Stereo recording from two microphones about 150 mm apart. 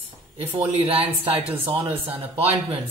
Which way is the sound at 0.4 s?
40° right (ahead or behind).